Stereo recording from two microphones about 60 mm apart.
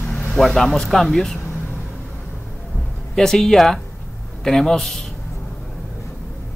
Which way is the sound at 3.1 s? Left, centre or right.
Centre.